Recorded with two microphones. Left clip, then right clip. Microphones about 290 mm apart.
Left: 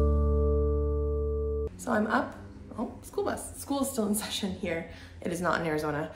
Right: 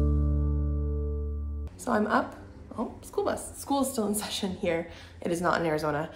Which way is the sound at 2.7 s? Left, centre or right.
Centre.